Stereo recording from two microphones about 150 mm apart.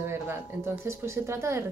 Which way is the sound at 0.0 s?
15° right (ahead or behind).